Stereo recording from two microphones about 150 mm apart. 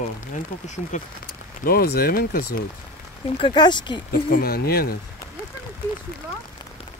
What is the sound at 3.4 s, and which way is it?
Speech, 30° left (ahead or behind).